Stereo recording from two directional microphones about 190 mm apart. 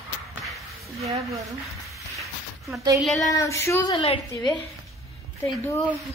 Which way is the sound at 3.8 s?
25° left (ahead or behind).